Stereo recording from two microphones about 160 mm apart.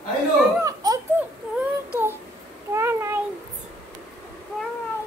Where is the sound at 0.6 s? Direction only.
20° right (ahead or behind).